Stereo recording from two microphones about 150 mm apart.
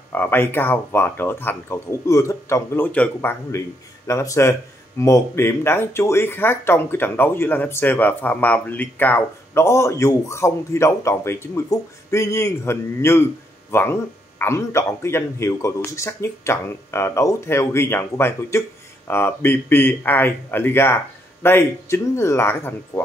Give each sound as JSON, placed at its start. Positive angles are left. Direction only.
{"t": 0.1, "sound": "speech", "side_deg": 15}